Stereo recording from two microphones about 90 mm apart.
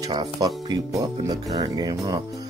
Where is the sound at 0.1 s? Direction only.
50° right (ahead or behind).